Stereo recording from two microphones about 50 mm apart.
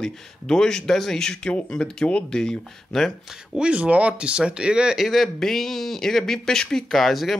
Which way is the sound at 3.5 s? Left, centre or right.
Right.